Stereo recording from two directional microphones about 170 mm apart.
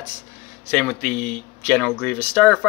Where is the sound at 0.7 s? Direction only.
5° left (ahead or behind).